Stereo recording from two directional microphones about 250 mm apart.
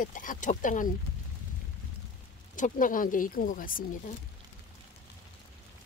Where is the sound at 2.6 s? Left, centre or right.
Left.